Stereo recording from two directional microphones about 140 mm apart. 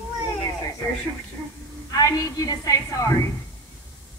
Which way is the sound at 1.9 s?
25° left (ahead or behind).